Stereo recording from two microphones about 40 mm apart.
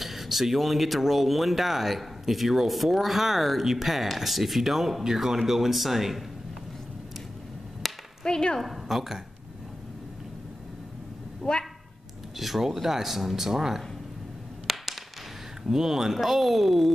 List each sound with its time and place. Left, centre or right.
0.0 s speech: centre
7.8 s whip: centre
8.2 s speech: centre
8.5 s speech: centre
11.4 s a woman's voice: left
12.4 s speech: centre
14.7 s a sound: centre
15.6 s speech: centre